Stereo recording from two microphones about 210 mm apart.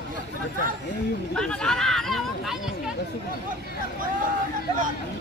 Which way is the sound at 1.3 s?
5° left (ahead or behind).